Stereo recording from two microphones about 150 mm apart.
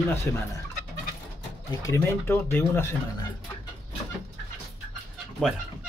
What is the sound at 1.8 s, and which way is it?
Speech, 20° left (ahead or behind).